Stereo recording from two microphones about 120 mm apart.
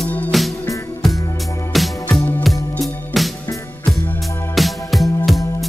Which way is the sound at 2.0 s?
Centre (ahead or behind).